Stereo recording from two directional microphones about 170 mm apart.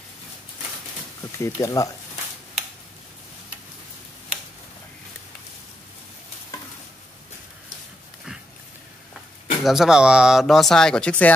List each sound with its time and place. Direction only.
1.4 s speech: 20° left (ahead or behind)
9.6 s speech: centre (ahead or behind)